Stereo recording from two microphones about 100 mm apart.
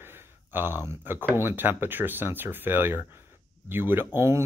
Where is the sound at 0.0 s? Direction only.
20° right (ahead or behind).